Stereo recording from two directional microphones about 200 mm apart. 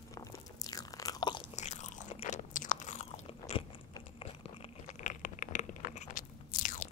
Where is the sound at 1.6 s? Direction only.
35° left (ahead or behind).